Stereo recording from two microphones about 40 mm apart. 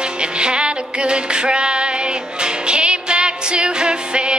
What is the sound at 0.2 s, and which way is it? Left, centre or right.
Music, right.